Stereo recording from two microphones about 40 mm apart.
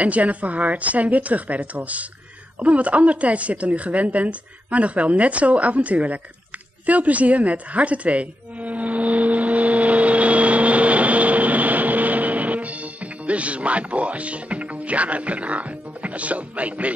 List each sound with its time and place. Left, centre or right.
0.0 s a woman's voice: right
6.9 s music: right